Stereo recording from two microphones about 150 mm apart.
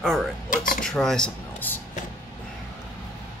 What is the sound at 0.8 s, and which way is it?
Speech, 5° left (ahead or behind).